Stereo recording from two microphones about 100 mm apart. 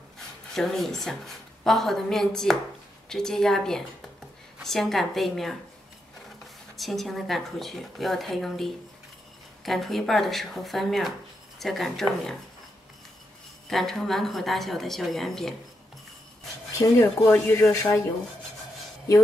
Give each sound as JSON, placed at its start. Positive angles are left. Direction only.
{"t": 0.6, "sound": "a woman's voice", "side_deg": 5}
{"t": 6.8, "sound": "a woman's voice", "side_deg": 0}
{"t": 13.7, "sound": "a woman's voice", "side_deg": 5}
{"t": 17.0, "sound": "speech", "side_deg": 20}